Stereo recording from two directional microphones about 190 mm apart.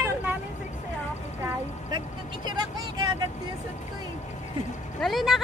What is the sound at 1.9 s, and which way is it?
Vehicle, 25° right (ahead or behind).